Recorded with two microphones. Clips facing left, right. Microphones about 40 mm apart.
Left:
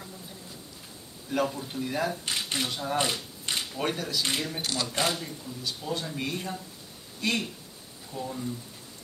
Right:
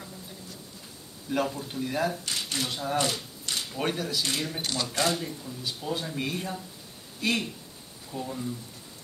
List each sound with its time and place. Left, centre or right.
1.3 s speech: centre
2.2 s speech: left
2.7 s speech: centre
3.0 s a sound: left
3.7 s speech: centre